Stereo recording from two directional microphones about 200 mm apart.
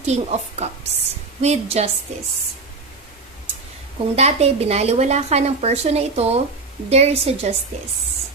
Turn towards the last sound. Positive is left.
turn(degrees=-30)  # may be behind; listen again after turning